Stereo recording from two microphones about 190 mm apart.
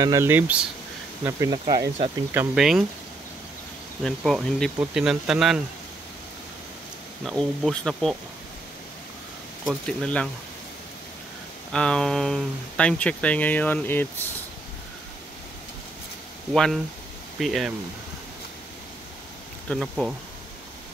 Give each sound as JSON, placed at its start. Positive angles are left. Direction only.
{"t": 0.0, "sound": "speech", "side_deg": -15}
{"t": 2.3, "sound": "speech", "side_deg": -5}
{"t": 4.0, "sound": "speech", "side_deg": 0}
{"t": 7.2, "sound": "speech", "side_deg": 5}
{"t": 9.7, "sound": "speech", "side_deg": 5}
{"t": 11.7, "sound": "speech", "side_deg": 5}
{"t": 16.5, "sound": "speech", "side_deg": 5}
{"t": 19.7, "sound": "speech", "side_deg": 0}